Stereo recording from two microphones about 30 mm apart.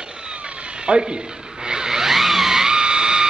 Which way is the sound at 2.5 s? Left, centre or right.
Right.